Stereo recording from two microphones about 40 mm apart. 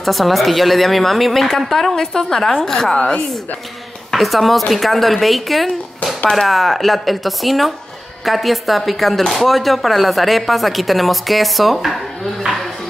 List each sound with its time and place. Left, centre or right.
0.0 s speech: centre
4.1 s speech: centre